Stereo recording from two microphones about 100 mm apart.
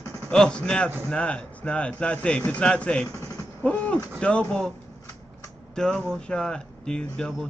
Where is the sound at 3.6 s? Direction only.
15° left (ahead or behind).